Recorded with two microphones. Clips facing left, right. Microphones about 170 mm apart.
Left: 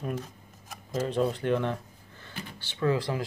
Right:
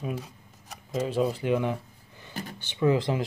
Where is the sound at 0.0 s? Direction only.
10° right (ahead or behind).